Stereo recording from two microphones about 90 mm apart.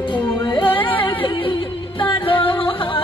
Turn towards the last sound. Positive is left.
turn(degrees=75)  # may be behind; listen again after turning